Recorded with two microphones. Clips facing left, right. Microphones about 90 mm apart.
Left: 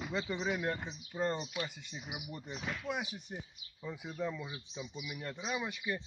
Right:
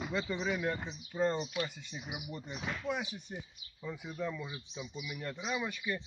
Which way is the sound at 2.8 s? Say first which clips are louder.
Right 3 dB; 15° left (ahead or behind).